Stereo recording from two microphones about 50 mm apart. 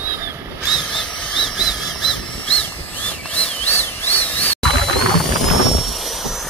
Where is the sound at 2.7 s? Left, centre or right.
Left.